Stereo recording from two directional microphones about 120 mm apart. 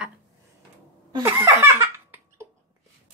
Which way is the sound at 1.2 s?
20° right (ahead or behind).